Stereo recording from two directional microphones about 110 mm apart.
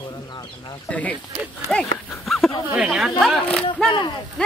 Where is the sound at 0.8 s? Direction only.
15° left (ahead or behind).